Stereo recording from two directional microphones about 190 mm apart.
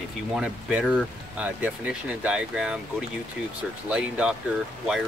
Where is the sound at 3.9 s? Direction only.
5° right (ahead or behind).